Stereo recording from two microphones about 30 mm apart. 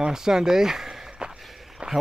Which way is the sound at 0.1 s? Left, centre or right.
Centre.